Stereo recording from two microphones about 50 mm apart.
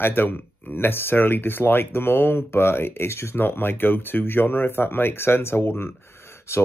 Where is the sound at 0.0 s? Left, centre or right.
Left.